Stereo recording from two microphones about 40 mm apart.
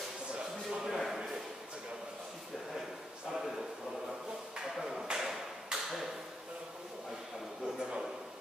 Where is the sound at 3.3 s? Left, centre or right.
Centre.